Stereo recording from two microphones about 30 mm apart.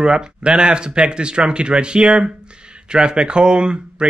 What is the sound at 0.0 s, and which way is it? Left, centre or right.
Speech, right.